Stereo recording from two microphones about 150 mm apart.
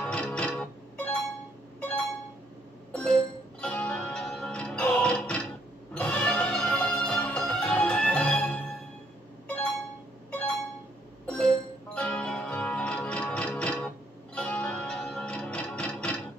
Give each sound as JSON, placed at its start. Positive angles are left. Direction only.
{"t": 0.0, "sound": "music", "side_deg": 5}
{"t": 2.9, "sound": "music", "side_deg": 5}
{"t": 11.2, "sound": "music", "side_deg": 5}